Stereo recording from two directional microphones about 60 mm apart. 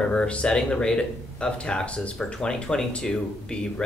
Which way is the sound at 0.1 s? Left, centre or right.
Centre.